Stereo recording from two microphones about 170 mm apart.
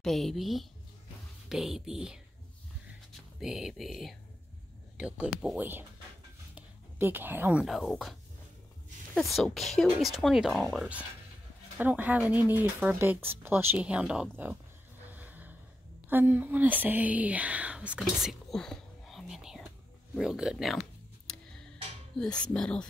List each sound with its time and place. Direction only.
0.0 s speech: centre (ahead or behind)
6.5 s a sound: 10° right (ahead or behind)
7.6 s speech: centre (ahead or behind)
15.0 s vehicle: 10° right (ahead or behind)
16.1 s speech: 10° right (ahead or behind)
22.2 s speech: 5° left (ahead or behind)